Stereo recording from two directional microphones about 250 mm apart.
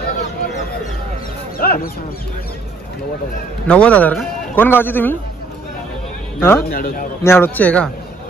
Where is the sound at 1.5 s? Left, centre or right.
Left.